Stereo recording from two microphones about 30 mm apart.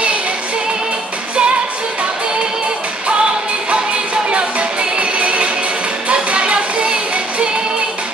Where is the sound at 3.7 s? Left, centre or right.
Right.